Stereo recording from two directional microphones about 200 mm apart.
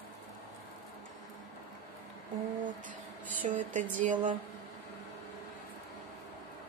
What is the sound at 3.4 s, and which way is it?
Speech, 40° right (ahead or behind).